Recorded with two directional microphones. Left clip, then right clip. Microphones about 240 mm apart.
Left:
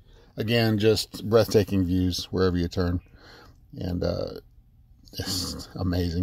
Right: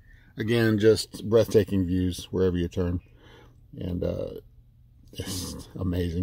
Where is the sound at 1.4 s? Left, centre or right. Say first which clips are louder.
Even; left.